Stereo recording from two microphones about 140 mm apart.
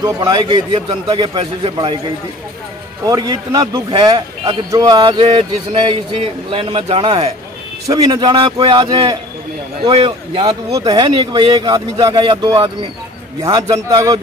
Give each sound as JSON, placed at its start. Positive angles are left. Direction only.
{"t": 0.0, "sound": "a man's voice", "side_deg": -30}
{"t": 3.1, "sound": "a man's voice", "side_deg": -25}
{"t": 7.9, "sound": "a man's voice", "side_deg": -30}
{"t": 10.5, "sound": "speech", "side_deg": -30}